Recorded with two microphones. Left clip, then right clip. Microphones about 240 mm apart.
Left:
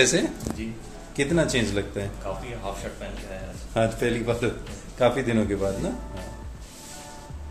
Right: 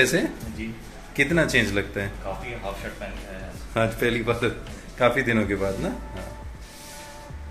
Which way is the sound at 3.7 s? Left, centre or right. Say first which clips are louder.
Right 1 dB; centre.